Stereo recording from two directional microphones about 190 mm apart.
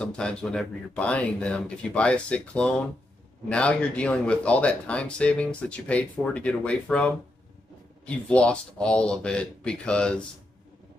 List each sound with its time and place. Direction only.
0.0 s speech: 5° left (ahead or behind)